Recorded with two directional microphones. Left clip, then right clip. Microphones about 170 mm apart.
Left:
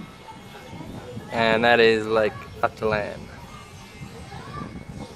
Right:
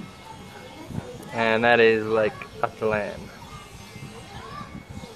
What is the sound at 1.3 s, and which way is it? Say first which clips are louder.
Speech: left 1 dB; 60° left (ahead or behind).